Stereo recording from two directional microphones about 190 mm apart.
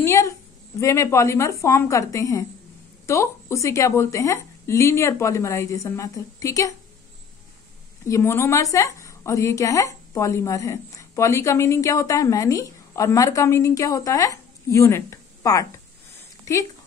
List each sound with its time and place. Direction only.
0.0 s a woman's voice: 15° left (ahead or behind)
8.1 s a woman's voice: 15° left (ahead or behind)
16.2 s a sound: 15° left (ahead or behind)